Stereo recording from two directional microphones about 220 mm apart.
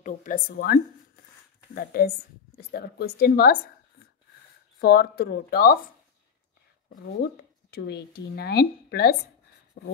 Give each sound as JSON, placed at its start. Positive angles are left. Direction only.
{"t": 0.0, "sound": "a woman's voice", "side_deg": 35}
{"t": 4.7, "sound": "a woman's voice", "side_deg": 45}
{"t": 7.7, "sound": "a woman's voice", "side_deg": 45}